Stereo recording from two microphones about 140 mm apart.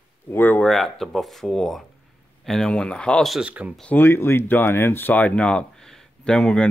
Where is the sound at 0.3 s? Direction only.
15° left (ahead or behind); by 3.8 s 5° right (ahead or behind).